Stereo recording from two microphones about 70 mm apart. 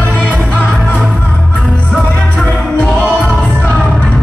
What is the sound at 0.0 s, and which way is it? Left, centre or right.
Music, centre.